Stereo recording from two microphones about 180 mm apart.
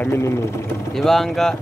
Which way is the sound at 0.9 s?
Centre (ahead or behind).